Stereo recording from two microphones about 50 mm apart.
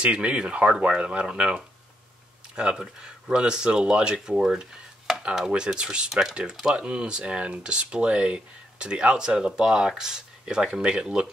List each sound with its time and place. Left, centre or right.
0.0 s speech: right
5.8 s speech: centre